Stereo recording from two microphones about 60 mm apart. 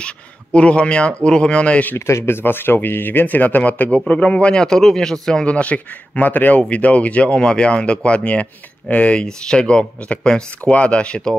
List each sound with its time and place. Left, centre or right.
0.0 s speech: centre
2.0 s speech: left; by 5.4 s centre
5.4 s speech: left